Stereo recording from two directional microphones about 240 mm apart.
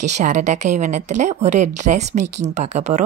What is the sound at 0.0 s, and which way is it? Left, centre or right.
Speech, right.